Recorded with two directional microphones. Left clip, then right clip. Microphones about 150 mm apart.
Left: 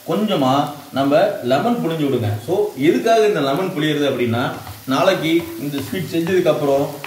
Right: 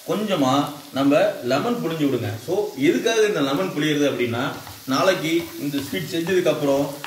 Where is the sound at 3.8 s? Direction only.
15° right (ahead or behind).